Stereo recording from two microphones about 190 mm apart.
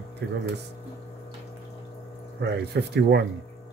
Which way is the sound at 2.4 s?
60° right (ahead or behind).